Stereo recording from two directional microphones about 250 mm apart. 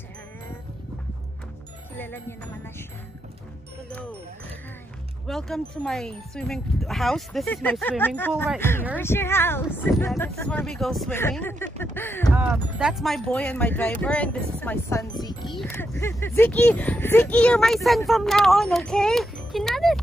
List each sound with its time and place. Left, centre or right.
2.0 s speech: centre
5.2 s speech: centre
12.4 s speech: centre